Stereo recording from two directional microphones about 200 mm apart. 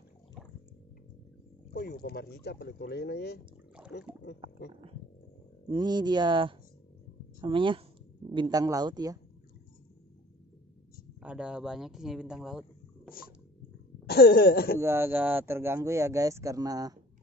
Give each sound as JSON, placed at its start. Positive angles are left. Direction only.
{"t": 1.7, "sound": "speech", "side_deg": 45}
{"t": 5.7, "sound": "speech", "side_deg": -20}
{"t": 11.1, "sound": "speech", "side_deg": -5}
{"t": 14.0, "sound": "speech", "side_deg": 55}
{"t": 14.8, "sound": "speech", "side_deg": -10}